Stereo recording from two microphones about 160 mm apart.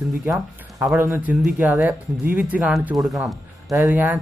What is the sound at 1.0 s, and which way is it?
Speech, 15° right (ahead or behind).